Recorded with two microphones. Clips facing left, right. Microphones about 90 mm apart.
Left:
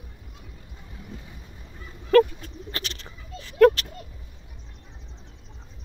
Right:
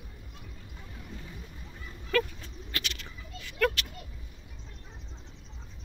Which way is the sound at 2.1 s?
45° left (ahead or behind).